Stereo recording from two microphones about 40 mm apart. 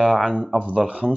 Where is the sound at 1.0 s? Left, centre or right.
Left.